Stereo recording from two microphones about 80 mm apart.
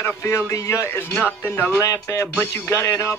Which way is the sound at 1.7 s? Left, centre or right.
Left.